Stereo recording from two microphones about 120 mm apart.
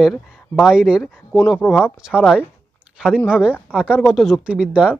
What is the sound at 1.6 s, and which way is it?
Speech, 20° left (ahead or behind).